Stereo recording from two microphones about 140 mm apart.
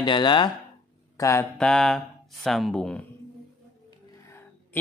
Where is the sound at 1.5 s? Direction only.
5° left (ahead or behind).